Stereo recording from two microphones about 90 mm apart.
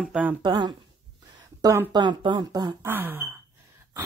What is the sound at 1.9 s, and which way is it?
Speech, 55° right (ahead or behind).